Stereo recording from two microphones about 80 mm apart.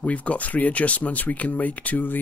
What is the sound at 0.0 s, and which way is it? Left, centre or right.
Speech, centre.